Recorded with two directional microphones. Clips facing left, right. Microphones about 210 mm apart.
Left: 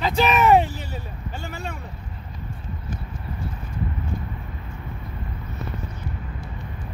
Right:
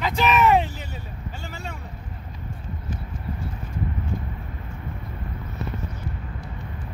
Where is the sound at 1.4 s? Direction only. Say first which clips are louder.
Left 4 dB; 55° left (ahead or behind).